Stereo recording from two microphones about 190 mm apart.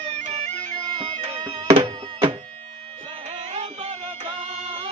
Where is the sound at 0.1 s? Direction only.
35° right (ahead or behind).